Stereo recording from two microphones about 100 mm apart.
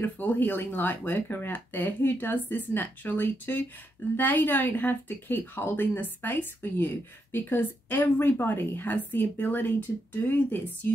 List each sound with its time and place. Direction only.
0.0 s speech: 20° left (ahead or behind)